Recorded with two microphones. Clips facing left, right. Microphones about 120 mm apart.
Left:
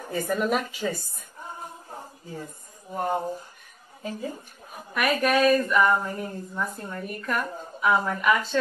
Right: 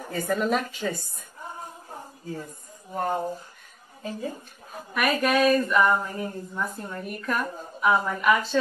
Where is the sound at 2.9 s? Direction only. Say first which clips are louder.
Even; 15° left (ahead or behind).